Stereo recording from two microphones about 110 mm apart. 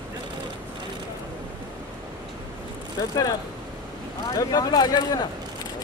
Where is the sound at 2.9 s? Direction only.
35° left (ahead or behind).